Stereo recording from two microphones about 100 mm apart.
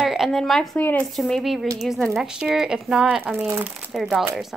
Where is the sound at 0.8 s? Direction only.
20° left (ahead or behind).